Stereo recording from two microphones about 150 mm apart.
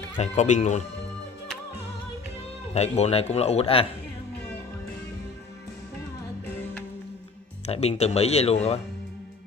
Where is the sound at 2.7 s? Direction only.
45° left (ahead or behind).